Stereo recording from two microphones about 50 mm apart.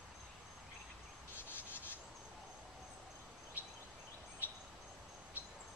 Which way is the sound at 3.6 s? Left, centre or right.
Left.